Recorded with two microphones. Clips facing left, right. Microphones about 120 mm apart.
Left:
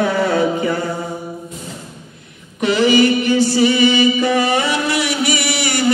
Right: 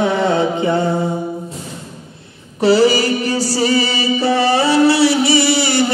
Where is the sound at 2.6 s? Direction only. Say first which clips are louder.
Right 1 dB; 35° right (ahead or behind).